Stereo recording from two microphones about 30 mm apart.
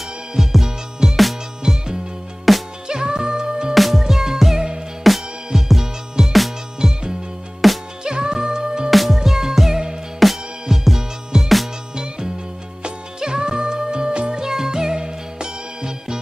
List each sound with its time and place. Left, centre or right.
0.4 s music: centre
1.7 s music: centre
2.5 s music: centre
2.9 s music: right
3.7 s music: centre
5.8 s music: centre
6.8 s music: right
7.6 s music: centre
8.0 s music: right
8.9 s music: centre
10.1 s music: centre
11.9 s music: right
14.4 s music: centre